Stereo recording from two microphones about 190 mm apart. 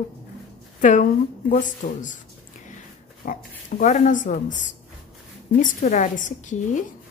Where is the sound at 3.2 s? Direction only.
45° left (ahead or behind).